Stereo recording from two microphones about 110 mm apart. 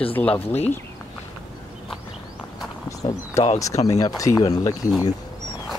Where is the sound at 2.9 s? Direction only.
30° left (ahead or behind).